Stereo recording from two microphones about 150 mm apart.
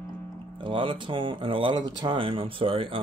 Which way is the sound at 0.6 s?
35° right (ahead or behind).